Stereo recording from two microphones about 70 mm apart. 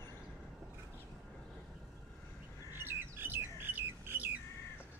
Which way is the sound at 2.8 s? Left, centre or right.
Right.